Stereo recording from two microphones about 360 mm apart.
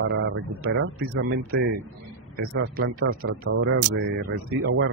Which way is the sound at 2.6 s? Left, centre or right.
Right.